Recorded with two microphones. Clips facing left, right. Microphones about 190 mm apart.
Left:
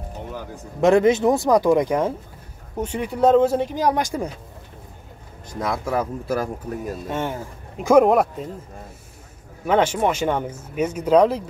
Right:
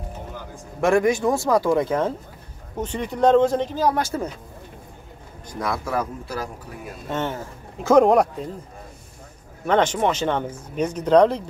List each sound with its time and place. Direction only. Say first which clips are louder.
0.7 s speech: left 3 dB; 20° left (ahead or behind)
5.5 s speech: left 2 dB; 25° left (ahead or behind)
6.2 s speech: left 6 dB; 50° left (ahead or behind)
7.1 s speech: right 3 dB; 10° left (ahead or behind)
9.7 s speech: left 1 dB; 10° left (ahead or behind)